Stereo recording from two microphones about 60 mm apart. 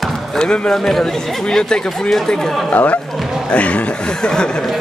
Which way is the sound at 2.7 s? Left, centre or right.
Left.